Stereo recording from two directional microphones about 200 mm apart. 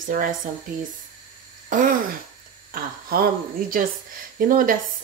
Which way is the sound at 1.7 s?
40° right (ahead or behind).